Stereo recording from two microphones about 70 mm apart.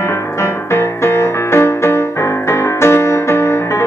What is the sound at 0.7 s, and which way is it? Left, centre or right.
Music, left.